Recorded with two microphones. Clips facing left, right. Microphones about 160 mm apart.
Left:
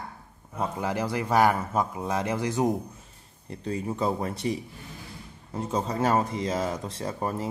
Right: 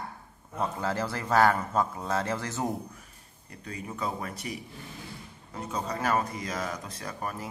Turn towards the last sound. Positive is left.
turn(degrees=25)  # may be behind; listen again after turning